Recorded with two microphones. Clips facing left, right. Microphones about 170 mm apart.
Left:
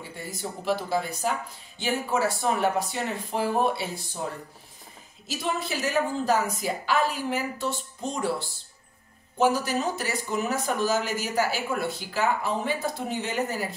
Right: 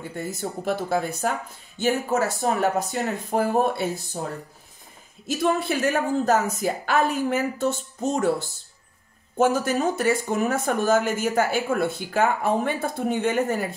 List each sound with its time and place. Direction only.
0.4 s speech: 50° right (ahead or behind)
5.2 s speech: 55° right (ahead or behind)